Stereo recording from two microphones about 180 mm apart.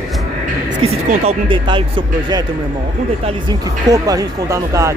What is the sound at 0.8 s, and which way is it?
Speech, 30° right (ahead or behind).